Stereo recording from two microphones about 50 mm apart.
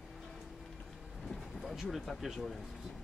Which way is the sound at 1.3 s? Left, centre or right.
Centre.